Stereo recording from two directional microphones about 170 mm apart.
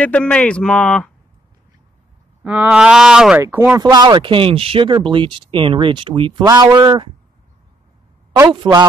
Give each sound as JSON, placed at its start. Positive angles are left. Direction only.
{"t": 0.0, "sound": "speech", "side_deg": 10}
{"t": 2.4, "sound": "speech", "side_deg": -10}
{"t": 3.8, "sound": "speech", "side_deg": -25}
{"t": 8.6, "sound": "speech", "side_deg": -25}